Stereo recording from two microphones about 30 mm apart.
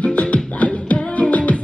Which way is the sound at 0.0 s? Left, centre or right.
Left.